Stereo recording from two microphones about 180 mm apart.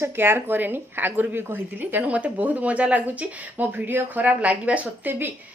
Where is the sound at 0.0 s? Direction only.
15° right (ahead or behind).